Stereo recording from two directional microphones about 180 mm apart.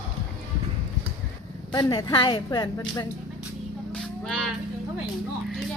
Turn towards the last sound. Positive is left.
turn(degrees=0)  # may be behind; listen again after turning